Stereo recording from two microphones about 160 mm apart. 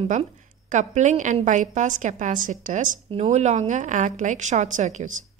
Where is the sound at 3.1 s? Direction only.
40° right (ahead or behind).